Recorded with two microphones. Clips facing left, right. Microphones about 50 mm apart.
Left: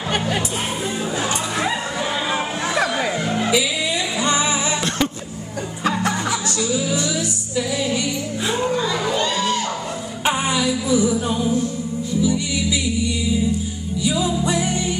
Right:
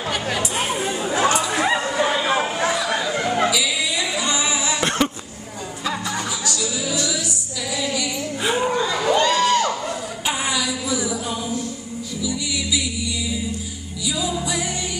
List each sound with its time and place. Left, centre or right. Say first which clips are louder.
0.8 s chatter: right 5 dB; right
2.7 s chatter: left 2 dB; left
4.2 s music: left 3 dB; left
4.8 s a sound: right 1 dB; centre
9.1 s music: right 4 dB; right
10.2 s music: left 4 dB; left
14.0 s music: left 4 dB; left